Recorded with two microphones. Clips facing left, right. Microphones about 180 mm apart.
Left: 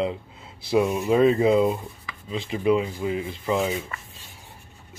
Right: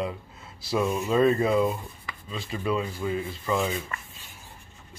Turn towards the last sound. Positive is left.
turn(degrees=20)  # may be behind; listen again after turning